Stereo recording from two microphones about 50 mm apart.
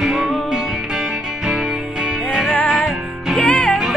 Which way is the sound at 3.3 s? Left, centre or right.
Left.